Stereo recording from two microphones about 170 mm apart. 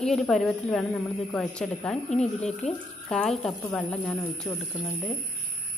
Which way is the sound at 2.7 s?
5° left (ahead or behind).